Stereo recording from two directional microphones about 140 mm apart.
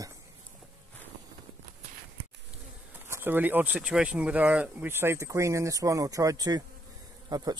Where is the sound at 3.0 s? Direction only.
15° right (ahead or behind).